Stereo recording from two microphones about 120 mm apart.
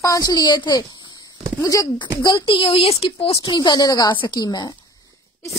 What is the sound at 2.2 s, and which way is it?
A woman's voice, 40° left (ahead or behind).